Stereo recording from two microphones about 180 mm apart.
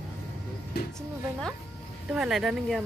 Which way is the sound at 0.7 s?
65° left (ahead or behind).